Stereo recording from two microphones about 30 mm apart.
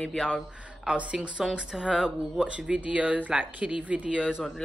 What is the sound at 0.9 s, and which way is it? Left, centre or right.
Speech, right.